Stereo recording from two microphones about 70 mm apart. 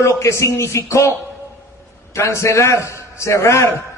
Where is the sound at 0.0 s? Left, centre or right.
Left.